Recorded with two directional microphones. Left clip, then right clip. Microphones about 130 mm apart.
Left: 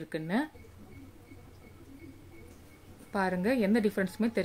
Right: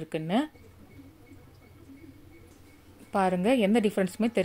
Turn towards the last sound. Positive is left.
turn(degrees=-25)  # may be behind; listen again after turning